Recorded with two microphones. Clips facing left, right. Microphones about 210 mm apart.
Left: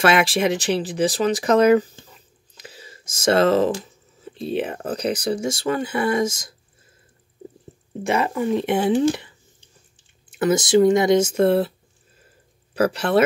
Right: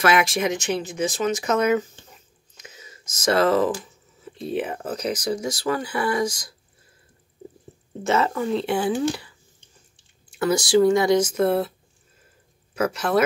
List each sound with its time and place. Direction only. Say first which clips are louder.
0.0 s speech: left 2 dB; 30° left (ahead or behind)
2.6 s a sound: left 4 dB; 30° left (ahead or behind)
4.5 s speech: left 2 dB; 30° left (ahead or behind)
8.0 s speech: left 1 dB; 15° left (ahead or behind)
10.3 s speech: left 2 dB; 20° left (ahead or behind)
12.7 s speech: left 3 dB; 30° left (ahead or behind)